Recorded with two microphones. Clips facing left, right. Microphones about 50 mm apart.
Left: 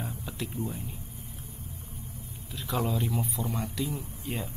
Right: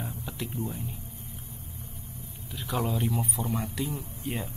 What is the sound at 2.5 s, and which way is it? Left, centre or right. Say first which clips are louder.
A man's voice: even; centre.